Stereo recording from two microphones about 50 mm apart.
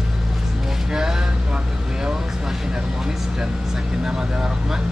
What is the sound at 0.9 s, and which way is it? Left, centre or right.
Speech, centre.